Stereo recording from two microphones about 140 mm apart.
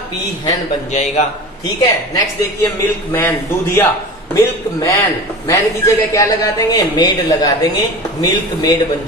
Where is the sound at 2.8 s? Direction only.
15° left (ahead or behind).